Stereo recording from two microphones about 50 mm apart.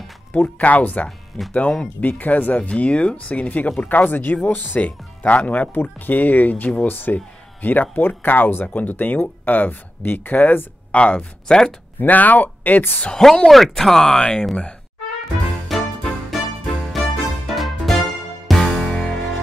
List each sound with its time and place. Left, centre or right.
0.3 s speech: left
1.3 s speech: centre
2.0 s speech: left
11.4 s speech: centre
12.0 s speech: left
13.1 s speech: centre
15.7 s music: centre